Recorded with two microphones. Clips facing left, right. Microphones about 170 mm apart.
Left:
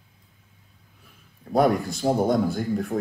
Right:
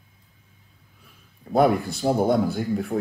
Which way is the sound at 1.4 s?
5° right (ahead or behind).